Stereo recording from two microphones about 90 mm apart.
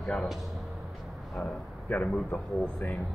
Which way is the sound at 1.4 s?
15° left (ahead or behind).